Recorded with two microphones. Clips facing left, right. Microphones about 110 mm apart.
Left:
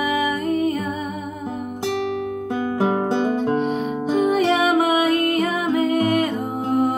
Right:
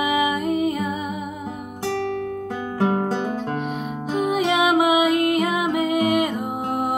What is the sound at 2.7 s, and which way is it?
Music, 15° left (ahead or behind).